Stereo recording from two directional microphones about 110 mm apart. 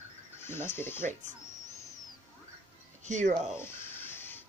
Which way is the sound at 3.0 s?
90° right.